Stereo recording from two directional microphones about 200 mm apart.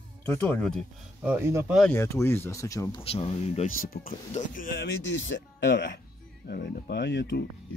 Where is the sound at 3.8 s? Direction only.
45° left (ahead or behind).